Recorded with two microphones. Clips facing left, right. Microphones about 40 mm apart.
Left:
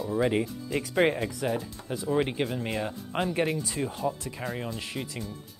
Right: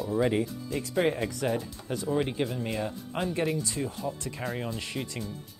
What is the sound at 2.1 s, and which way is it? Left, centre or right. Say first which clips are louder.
Speech: left 2 dB; centre.